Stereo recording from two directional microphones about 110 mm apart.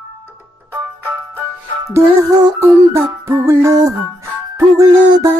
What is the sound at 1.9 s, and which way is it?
Music, 25° right (ahead or behind).